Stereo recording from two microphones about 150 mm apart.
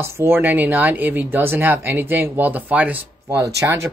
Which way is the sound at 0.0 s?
15° right (ahead or behind).